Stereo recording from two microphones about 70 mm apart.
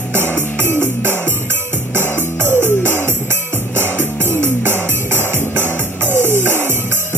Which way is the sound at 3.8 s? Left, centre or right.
Left.